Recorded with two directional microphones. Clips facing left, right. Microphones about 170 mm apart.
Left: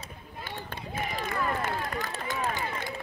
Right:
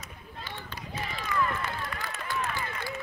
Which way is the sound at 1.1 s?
45° left (ahead or behind).